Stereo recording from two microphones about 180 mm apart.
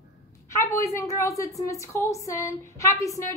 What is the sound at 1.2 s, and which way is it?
A woman's voice, 15° left (ahead or behind).